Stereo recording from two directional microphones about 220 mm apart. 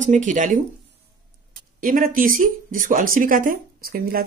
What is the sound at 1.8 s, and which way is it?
A woman's voice, 40° right (ahead or behind).